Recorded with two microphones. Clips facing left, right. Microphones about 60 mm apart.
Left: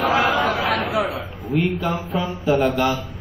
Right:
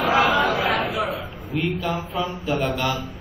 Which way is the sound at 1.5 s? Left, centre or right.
Centre.